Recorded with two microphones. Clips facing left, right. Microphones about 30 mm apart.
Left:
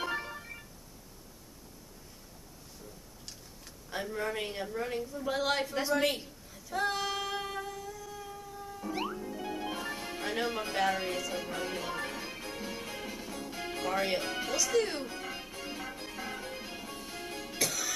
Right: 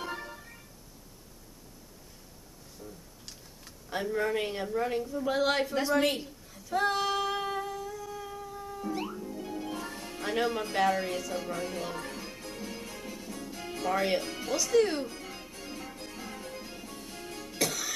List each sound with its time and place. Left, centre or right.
0.0 s organ: left
2.8 s a sound: centre
8.9 s music: centre
10.2 s speech: centre
11.3 s music: centre
13.9 s speech: centre
14.2 s music: centre
14.5 s speech: centre
15.0 s music: centre
17.6 s music: centre